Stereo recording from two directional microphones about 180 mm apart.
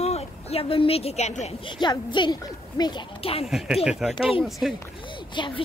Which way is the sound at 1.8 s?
25° left (ahead or behind).